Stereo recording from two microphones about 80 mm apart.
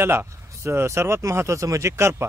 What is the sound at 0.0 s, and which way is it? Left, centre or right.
A man's voice, right.